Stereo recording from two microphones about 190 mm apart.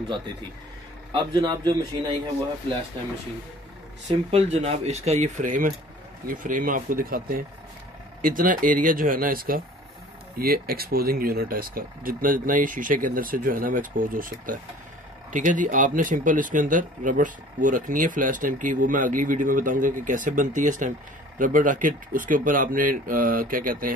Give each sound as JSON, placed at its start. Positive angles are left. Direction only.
{"t": 1.1, "sound": "a man's voice", "side_deg": -20}
{"t": 4.1, "sound": "speech", "side_deg": -30}